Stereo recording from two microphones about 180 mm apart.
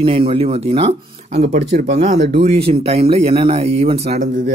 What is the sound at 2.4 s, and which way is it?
Speech, 35° right (ahead or behind).